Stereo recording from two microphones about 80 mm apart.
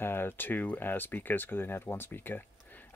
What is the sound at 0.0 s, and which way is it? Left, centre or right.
Speech, left.